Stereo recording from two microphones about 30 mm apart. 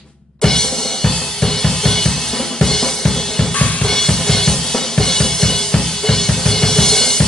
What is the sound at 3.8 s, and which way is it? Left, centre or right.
Drum kit, centre.